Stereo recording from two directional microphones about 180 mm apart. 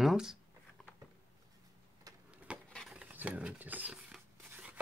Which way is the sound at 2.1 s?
20° right (ahead or behind).